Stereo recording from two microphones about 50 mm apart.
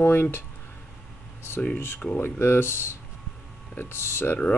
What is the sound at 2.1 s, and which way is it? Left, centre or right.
Speech, left.